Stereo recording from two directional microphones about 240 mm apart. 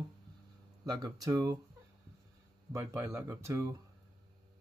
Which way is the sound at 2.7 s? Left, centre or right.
Centre.